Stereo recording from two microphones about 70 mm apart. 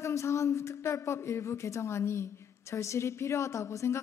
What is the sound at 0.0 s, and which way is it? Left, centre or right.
A woman's voice, left.